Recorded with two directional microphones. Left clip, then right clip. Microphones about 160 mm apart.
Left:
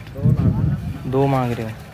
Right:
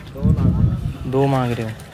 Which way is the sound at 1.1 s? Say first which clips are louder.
Even; 10° right (ahead or behind).